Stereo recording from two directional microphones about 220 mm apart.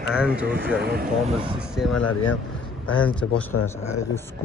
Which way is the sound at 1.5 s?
5° right (ahead or behind).